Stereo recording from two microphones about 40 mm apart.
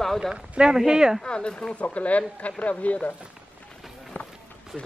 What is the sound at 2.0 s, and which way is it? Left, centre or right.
Speech, left.